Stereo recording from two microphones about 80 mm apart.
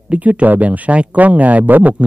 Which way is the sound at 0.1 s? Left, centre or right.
Centre.